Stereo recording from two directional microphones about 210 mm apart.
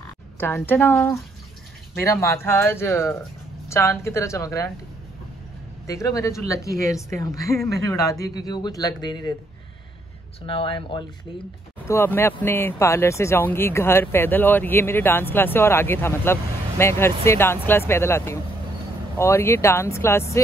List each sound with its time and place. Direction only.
0.4 s speech: 10° left (ahead or behind)
5.9 s speech: 15° left (ahead or behind)
10.4 s speech: 25° left (ahead or behind)
11.9 s speech: 10° left (ahead or behind)